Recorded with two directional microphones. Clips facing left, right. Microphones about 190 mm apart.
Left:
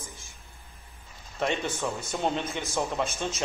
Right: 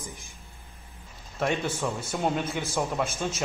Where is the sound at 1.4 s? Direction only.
5° right (ahead or behind).